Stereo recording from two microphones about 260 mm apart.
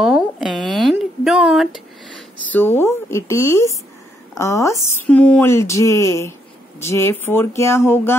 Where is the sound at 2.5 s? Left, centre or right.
Centre.